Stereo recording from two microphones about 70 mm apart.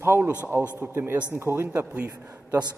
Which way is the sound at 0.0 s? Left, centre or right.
Right.